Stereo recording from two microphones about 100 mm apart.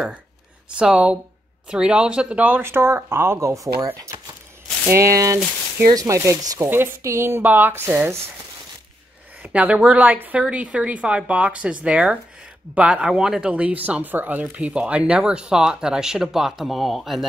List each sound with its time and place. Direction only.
0.7 s speech: 10° right (ahead or behind)
9.4 s a sound: 15° right (ahead or behind)
9.8 s speech: 15° right (ahead or behind)